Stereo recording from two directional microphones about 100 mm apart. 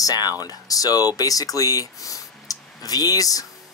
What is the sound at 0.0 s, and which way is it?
Speech, 40° left (ahead or behind).